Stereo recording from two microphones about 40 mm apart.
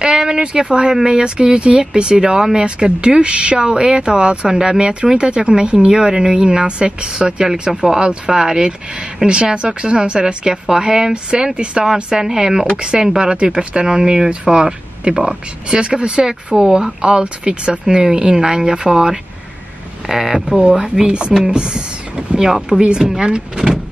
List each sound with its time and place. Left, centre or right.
0.0 s a sound: centre
1.0 s speech: centre
7.8 s speech: centre